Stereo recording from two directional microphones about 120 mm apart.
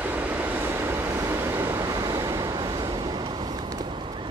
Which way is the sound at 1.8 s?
30° right (ahead or behind).